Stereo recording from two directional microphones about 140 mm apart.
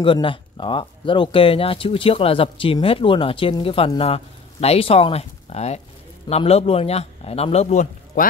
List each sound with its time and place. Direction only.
0.0 s a man's voice: 35° left (ahead or behind); by 8.3 s 55° left (ahead or behind)